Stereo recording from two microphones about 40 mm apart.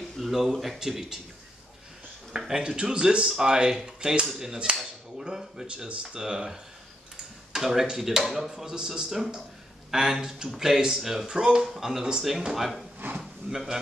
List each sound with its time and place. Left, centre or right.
0.2 s speech: centre
2.6 s speech: right; by 12.8 s centre
13.2 s a sound: centre